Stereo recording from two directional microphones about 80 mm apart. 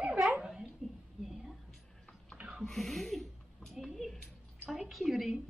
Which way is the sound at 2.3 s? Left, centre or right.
Centre.